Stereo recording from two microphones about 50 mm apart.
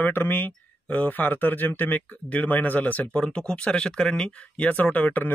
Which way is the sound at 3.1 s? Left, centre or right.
Centre.